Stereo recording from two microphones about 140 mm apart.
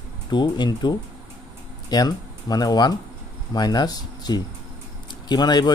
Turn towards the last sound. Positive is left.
turn(degrees=30)  # may be behind; listen again after turning